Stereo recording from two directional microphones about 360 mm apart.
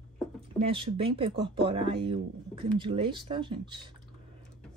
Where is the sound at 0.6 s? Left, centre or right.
Centre.